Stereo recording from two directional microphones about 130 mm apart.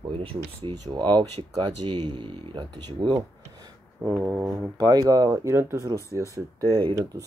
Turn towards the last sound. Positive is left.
turn(degrees=-35)  # may be behind; listen again after turning